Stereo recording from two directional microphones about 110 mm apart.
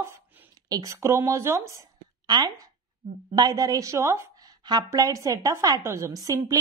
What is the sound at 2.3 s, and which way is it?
Speech, 35° right (ahead or behind).